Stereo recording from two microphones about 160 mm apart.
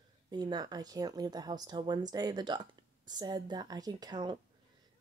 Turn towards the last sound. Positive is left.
turn(degrees=-25)  # may be behind; listen again after turning